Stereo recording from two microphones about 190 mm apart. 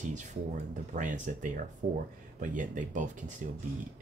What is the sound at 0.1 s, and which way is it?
Speech, 40° right (ahead or behind).